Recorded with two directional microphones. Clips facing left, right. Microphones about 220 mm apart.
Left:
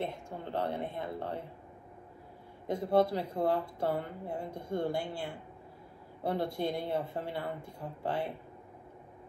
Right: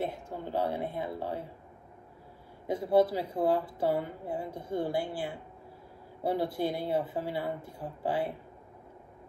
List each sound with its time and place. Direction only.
0.0 s speech: 5° right (ahead or behind)
2.7 s speech: 5° right (ahead or behind)